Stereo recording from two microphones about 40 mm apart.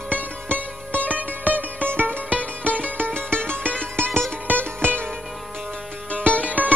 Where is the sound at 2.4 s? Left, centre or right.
Left.